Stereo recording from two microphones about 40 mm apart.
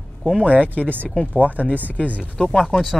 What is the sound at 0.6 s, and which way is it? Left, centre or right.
Speech, left.